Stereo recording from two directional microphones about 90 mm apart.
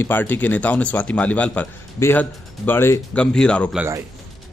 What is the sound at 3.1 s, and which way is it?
Speech, 10° left (ahead or behind).